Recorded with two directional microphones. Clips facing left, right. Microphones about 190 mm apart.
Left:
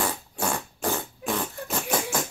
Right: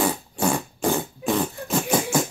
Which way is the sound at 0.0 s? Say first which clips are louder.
Right 6 dB; 10° right (ahead or behind).